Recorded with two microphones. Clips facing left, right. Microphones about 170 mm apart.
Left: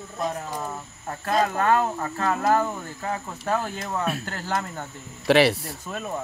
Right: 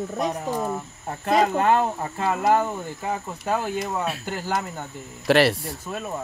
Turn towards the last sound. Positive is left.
turn(degrees=0)  # may be behind; listen again after turning